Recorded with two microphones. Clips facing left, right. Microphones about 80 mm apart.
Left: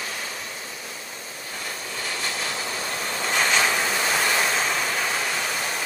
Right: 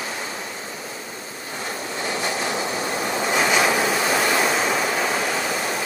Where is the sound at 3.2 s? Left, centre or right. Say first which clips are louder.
Right 3 dB; centre.